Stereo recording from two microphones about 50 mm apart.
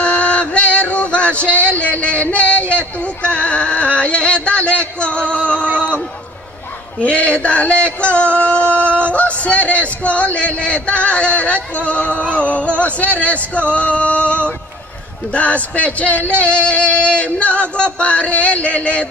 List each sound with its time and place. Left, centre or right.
0.0 s music: left
1.5 s speech: right
1.8 s a sound: left
3.0 s speech: left
5.3 s music: left
5.7 s a sound: right
7.0 s speech: left
7.4 s a sound: left
9.4 s speech: left